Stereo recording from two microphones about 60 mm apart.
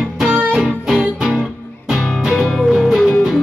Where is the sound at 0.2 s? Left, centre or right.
Centre.